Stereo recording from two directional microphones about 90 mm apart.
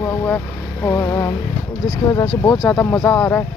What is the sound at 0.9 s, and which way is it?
Speech, 35° left (ahead or behind).